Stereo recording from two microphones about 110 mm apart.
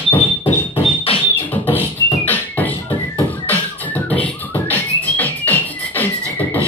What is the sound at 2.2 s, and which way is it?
Music, 15° left (ahead or behind).